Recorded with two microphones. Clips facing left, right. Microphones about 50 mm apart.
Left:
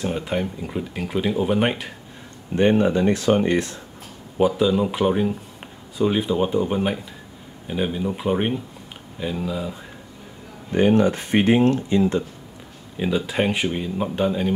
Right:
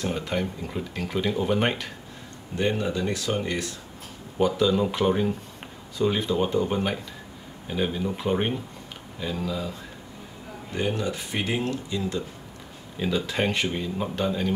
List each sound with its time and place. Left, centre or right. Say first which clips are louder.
0.0 s speech: left 3 dB; centre
2.5 s speech: left 8 dB; left
4.4 s speech: left 3 dB; centre
10.7 s speech: left 10 dB; left
12.9 s speech: left 4 dB; centre